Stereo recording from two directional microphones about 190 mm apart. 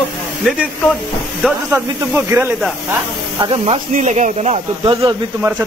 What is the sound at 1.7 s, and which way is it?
Speech, 10° right (ahead or behind).